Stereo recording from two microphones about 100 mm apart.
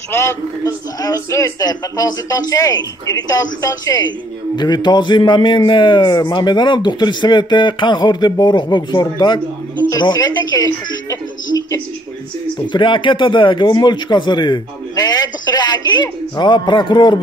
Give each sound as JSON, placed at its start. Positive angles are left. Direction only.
{"t": 0.1, "sound": "a man's voice", "side_deg": 30}
{"t": 12.5, "sound": "a man's voice", "side_deg": 55}